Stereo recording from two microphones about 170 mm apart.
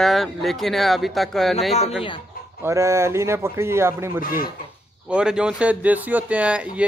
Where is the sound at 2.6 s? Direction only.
15° right (ahead or behind).